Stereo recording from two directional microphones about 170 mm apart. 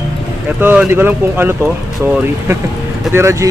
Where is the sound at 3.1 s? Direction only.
15° right (ahead or behind).